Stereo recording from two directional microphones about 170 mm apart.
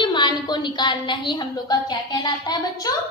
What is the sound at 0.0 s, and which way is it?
A woman's voice, 25° left (ahead or behind).